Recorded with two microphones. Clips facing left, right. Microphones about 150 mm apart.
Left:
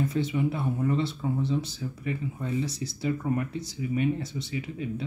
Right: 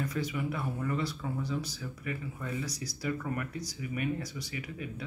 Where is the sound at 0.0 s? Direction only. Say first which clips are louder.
Left 7 dB; 25° left (ahead or behind).